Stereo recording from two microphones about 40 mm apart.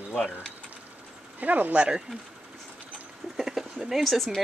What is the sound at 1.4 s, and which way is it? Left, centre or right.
Speech, right.